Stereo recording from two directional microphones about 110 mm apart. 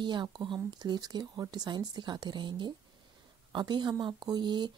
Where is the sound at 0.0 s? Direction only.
45° right (ahead or behind).